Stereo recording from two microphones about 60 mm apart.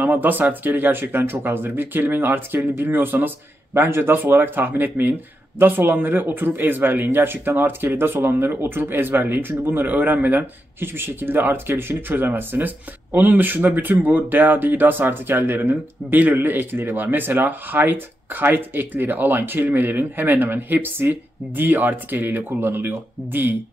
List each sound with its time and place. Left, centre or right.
0.0 s speech: right